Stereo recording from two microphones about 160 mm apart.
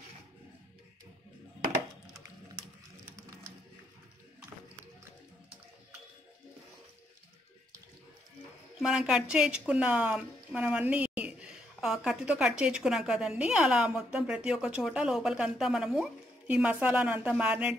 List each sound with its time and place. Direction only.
8.7 s a woman's voice: 5° right (ahead or behind)